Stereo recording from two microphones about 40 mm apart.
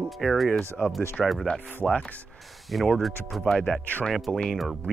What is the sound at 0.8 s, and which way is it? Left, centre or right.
Speech, left.